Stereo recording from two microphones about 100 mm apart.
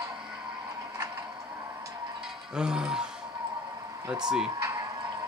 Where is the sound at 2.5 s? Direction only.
5° right (ahead or behind).